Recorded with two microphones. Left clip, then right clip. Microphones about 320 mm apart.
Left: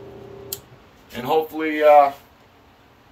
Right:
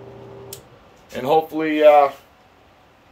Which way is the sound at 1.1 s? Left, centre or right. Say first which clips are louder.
Right 3 dB; right.